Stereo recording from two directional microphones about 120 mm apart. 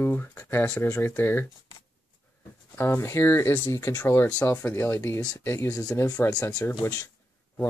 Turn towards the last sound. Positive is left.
turn(degrees=25)  # may be behind; listen again after turning